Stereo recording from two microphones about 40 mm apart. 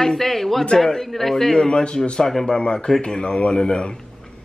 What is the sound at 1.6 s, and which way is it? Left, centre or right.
Speech, left.